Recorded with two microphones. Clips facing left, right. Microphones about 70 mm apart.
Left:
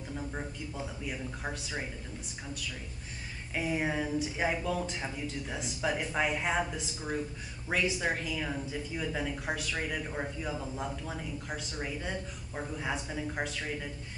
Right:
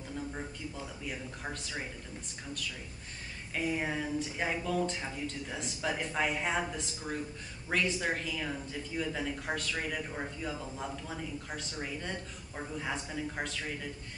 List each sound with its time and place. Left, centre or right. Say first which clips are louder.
1.0 s a woman's voice: left 1 dB; centre
3.5 s a woman's voice: left 2 dB; centre